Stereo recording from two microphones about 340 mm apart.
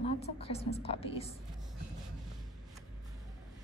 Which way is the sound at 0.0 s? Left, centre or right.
Centre.